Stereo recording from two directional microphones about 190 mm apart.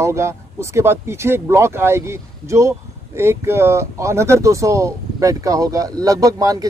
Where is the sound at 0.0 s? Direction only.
15° right (ahead or behind).